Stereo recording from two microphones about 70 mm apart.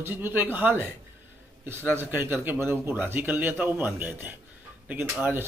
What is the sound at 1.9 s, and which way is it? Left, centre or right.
A man's voice, right.